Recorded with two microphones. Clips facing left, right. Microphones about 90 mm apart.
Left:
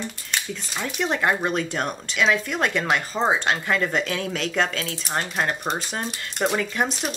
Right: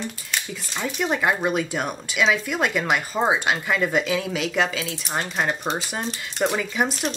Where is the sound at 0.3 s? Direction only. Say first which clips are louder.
Left 1 dB; centre (ahead or behind).